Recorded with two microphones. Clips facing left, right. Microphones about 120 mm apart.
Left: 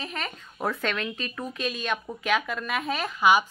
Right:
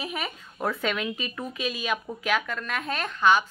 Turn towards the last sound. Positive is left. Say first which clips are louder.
# left 1 dB
turn(degrees=10)  # may be behind; listen again after turning